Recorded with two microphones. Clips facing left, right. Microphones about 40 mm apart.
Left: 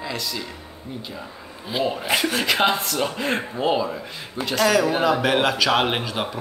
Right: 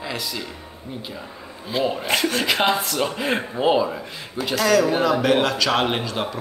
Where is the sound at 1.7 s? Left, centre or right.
Centre.